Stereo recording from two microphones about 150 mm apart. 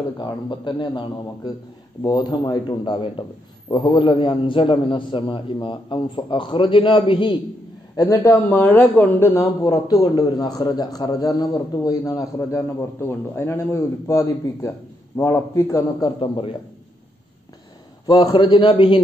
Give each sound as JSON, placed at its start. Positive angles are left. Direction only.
{"t": 0.2, "sound": "a man's voice", "side_deg": 30}
{"t": 7.9, "sound": "a man's voice", "side_deg": 20}
{"t": 16.2, "sound": "a man's voice", "side_deg": 35}
{"t": 18.2, "sound": "a man's voice", "side_deg": 30}